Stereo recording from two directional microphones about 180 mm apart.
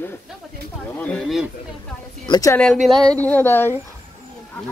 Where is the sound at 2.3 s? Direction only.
20° left (ahead or behind).